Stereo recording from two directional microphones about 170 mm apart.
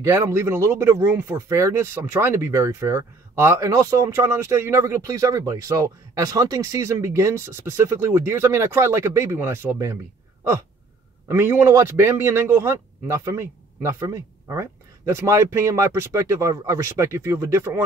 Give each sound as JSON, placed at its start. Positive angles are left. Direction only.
{"t": 0.0, "sound": "speech", "side_deg": -15}
{"t": 11.2, "sound": "speech", "side_deg": -15}